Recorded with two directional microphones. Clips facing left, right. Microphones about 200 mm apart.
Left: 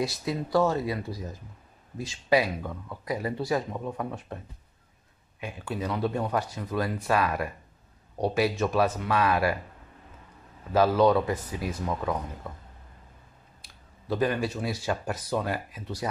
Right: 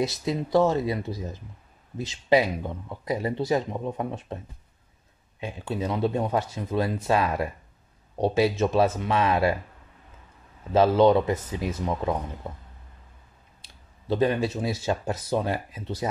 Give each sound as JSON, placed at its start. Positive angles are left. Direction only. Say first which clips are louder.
{"t": 0.0, "sound": "speech", "louder": "right 3 dB", "side_deg": -20}
{"t": 5.4, "sound": "speech", "louder": "right 3 dB", "side_deg": -25}
{"t": 10.7, "sound": "speech", "louder": "right 3 dB", "side_deg": -25}